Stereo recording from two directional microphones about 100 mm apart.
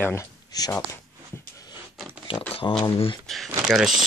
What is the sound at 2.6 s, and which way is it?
Speech, 40° left (ahead or behind).